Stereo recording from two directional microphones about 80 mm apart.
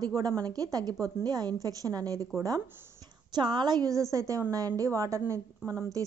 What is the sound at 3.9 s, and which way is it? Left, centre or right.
A woman's voice, right.